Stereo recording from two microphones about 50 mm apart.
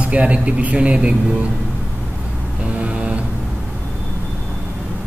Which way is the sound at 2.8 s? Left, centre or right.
Right.